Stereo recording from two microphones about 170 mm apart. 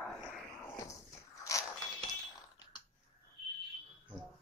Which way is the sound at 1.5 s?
20° left (ahead or behind).